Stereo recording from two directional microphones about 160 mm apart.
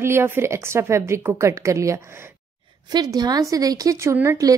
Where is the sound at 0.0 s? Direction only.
15° right (ahead or behind).